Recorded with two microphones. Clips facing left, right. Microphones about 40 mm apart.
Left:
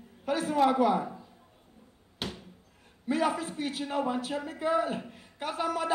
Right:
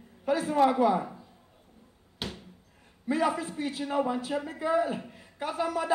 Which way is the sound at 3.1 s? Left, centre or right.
Left.